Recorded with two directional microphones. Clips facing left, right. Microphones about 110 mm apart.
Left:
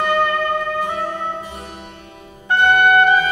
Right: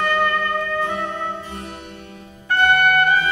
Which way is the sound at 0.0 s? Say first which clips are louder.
Left 2 dB; 15° left (ahead or behind).